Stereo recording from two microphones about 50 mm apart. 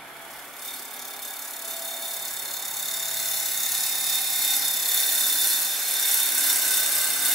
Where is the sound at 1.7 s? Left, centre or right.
Centre.